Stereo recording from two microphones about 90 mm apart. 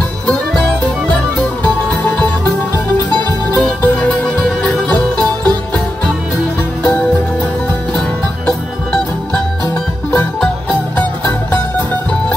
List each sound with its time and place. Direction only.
1.6 s music: 15° left (ahead or behind)
3.5 s music: 15° left (ahead or behind)
6.8 s music: 15° left (ahead or behind)
8.5 s music: 20° left (ahead or behind)